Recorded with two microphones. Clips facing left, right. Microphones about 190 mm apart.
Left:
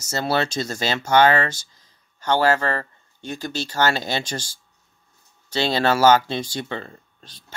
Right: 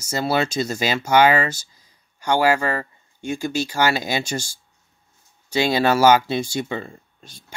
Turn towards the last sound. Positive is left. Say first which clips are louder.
# right 1 dB
turn(degrees=-10)  # may be behind; listen again after turning